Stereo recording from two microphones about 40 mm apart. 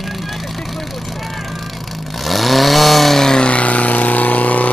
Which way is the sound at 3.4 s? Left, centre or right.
Left.